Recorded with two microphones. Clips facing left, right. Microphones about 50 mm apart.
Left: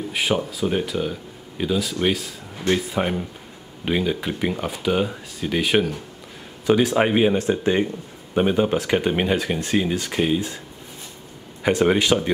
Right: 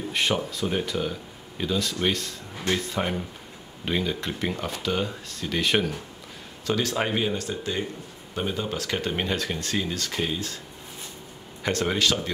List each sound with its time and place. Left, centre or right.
0.1 s speech: centre
11.6 s speech: centre